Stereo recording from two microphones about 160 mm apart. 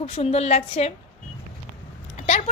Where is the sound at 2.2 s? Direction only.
45° left (ahead or behind).